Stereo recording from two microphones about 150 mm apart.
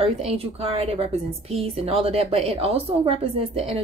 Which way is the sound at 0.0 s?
40° right (ahead or behind).